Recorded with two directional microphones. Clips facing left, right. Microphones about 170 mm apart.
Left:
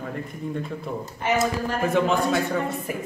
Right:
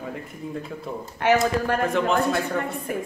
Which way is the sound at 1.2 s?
75° right (ahead or behind).